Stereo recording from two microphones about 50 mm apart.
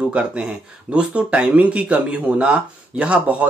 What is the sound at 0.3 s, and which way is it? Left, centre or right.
Speech, right.